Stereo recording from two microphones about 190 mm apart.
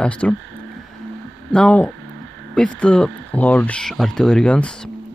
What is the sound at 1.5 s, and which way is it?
Speech, 5° left (ahead or behind).